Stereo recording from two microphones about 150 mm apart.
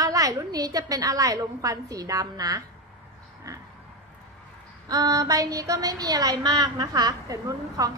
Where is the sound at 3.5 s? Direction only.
25° right (ahead or behind).